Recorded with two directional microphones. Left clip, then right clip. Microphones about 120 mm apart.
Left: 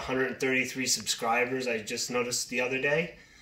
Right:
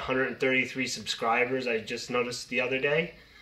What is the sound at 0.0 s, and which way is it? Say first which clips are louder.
Speech: right 2 dB; 15° right (ahead or behind).